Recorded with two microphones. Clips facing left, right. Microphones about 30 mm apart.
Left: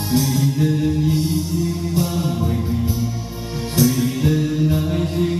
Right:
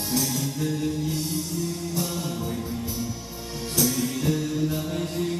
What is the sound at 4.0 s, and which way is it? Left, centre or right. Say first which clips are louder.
Music: left 6 dB; left.